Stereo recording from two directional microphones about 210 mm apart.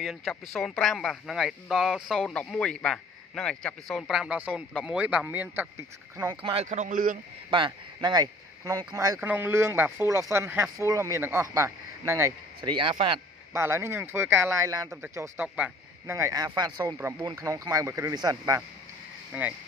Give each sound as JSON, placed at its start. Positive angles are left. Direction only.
{"t": 0.0, "sound": "speech", "side_deg": 0}
{"t": 6.5, "sound": "a man's voice", "side_deg": -35}
{"t": 7.5, "sound": "speech", "side_deg": -20}
{"t": 13.5, "sound": "speech", "side_deg": -10}